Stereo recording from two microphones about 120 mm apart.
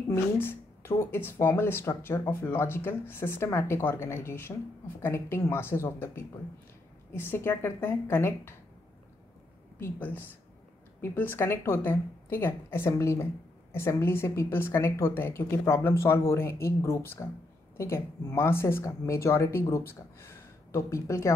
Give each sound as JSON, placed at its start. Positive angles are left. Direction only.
{"t": 0.1, "sound": "a woman's voice", "side_deg": 20}
{"t": 9.8, "sound": "a woman's voice", "side_deg": 15}